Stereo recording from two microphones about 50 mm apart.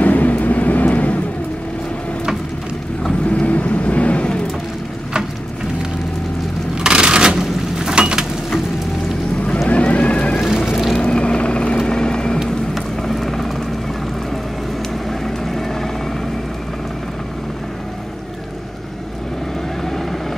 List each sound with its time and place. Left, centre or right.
0.0 s vehicle: left
3.3 s vehicle: left
6.8 s a sound: centre
9.7 s vehicle: left
10.4 s music: centre
11.0 s vehicle: centre
15.0 s vehicle: centre
19.8 s vehicle: centre